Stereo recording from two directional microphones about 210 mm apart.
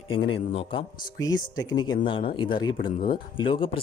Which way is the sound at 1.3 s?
20° left (ahead or behind).